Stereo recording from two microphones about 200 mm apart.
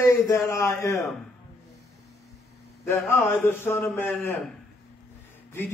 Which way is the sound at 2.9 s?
10° left (ahead or behind).